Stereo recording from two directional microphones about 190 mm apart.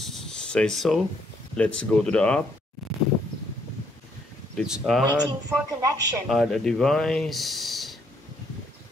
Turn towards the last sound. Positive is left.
turn(degrees=0)  # may be behind; listen again after turning